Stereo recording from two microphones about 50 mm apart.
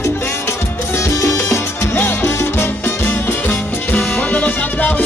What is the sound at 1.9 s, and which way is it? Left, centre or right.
Music, left.